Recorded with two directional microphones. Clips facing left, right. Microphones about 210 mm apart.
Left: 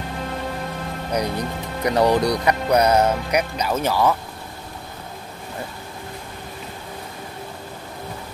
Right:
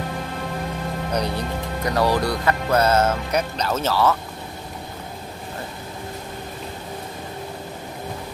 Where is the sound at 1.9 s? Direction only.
20° left (ahead or behind).